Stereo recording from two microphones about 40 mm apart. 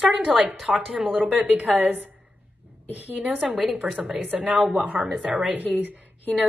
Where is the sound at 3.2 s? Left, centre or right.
Right.